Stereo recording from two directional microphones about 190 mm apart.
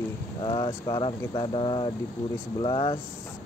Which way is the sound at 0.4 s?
25° left (ahead or behind).